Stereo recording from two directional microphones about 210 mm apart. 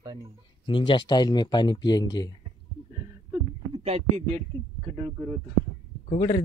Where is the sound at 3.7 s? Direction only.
30° right (ahead or behind).